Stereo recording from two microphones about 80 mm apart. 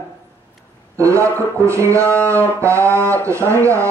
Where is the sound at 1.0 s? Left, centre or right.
Right.